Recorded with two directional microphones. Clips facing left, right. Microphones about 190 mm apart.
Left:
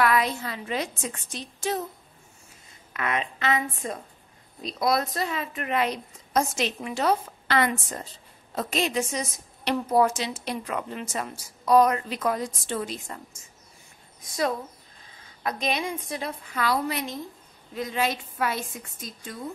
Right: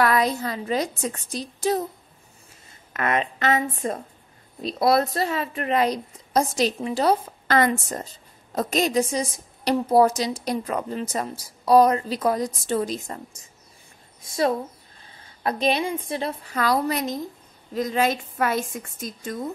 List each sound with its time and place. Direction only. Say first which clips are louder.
0.0 s a woman's voice: right 3 dB; 40° right (ahead or behind)
2.9 s a woman's voice: right 5 dB; 45° right (ahead or behind)
15.4 s a woman's voice: right 5 dB; 30° right (ahead or behind)
16.4 s a woman's voice: right 3 dB; 40° right (ahead or behind)